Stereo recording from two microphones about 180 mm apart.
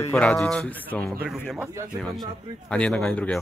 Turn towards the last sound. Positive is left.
turn(degrees=5)  # may be behind; listen again after turning